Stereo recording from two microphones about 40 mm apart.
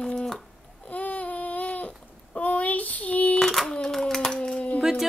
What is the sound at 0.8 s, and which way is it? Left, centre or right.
Babbling, left.